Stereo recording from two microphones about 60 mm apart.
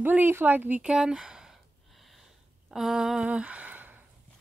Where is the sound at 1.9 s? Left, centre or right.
Centre.